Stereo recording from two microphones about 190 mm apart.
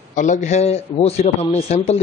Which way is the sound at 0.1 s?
40° left (ahead or behind).